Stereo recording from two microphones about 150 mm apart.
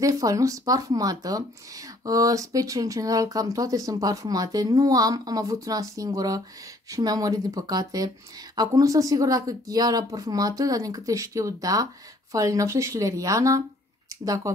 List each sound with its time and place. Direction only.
0.0 s speech: 25° right (ahead or behind)